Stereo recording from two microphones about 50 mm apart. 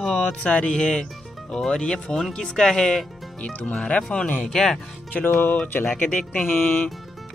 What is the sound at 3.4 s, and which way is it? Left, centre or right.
Music, left.